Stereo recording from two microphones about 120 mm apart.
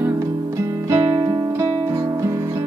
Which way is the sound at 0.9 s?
30° right (ahead or behind).